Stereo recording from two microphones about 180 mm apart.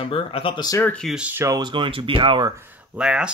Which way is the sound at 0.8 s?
5° left (ahead or behind).